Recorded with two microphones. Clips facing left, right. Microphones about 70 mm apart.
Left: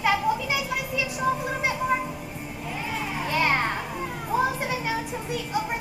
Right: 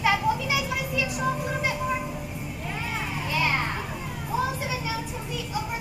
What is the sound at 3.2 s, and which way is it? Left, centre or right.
Children playing, left.